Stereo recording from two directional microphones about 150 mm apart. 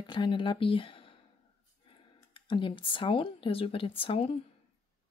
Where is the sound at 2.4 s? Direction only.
35° left (ahead or behind).